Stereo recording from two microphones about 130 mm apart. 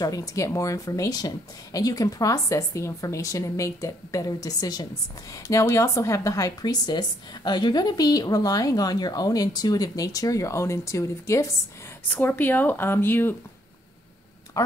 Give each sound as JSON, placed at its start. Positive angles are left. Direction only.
{"t": 0.0, "sound": "speech", "side_deg": 25}